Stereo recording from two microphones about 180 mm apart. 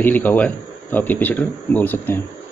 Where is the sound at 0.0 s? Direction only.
10° left (ahead or behind).